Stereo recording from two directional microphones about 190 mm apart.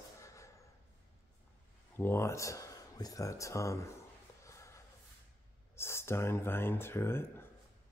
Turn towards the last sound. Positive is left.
turn(degrees=10)  # may be behind; listen again after turning